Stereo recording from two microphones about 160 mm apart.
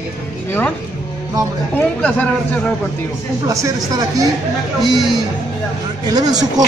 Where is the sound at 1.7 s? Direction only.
10° left (ahead or behind).